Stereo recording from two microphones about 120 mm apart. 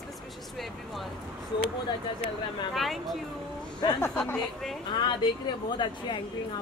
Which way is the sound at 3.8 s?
35° left (ahead or behind).